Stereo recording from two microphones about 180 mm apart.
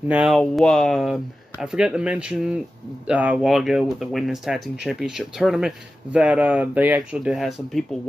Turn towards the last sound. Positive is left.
turn(degrees=0)  # may be behind; listen again after turning